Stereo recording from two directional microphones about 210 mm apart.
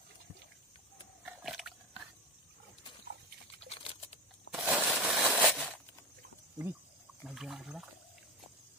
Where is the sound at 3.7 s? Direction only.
30° left (ahead or behind).